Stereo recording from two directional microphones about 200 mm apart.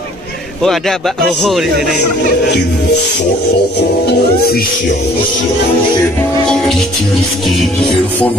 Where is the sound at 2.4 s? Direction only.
55° left (ahead or behind).